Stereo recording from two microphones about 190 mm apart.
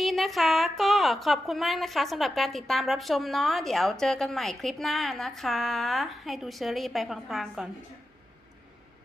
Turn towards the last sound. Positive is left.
turn(degrees=0)  # may be behind; listen again after turning